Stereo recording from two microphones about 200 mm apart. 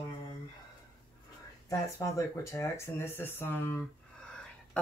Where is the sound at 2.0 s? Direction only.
15° left (ahead or behind).